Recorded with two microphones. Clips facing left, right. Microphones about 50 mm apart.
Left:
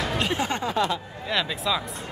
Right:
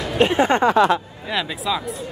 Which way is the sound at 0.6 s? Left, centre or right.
Right.